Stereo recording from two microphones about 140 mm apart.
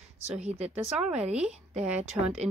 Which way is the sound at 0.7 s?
10° right (ahead or behind).